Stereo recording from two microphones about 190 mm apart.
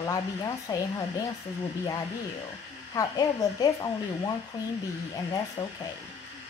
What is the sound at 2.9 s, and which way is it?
Speech, 20° left (ahead or behind).